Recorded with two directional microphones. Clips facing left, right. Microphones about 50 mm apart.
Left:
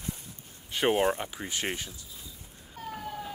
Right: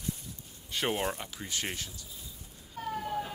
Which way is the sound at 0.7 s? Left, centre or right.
Centre.